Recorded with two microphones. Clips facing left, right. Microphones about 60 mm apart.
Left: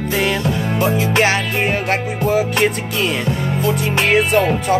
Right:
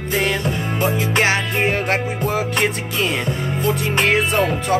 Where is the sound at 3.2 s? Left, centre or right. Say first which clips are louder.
Left 2 dB; right.